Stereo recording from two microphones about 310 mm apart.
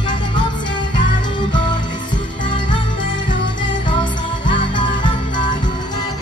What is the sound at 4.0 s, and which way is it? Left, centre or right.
Music, centre.